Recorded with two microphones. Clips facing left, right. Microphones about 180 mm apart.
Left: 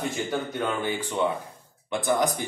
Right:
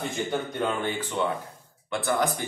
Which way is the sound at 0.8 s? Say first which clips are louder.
Left 1 dB; 10° left (ahead or behind).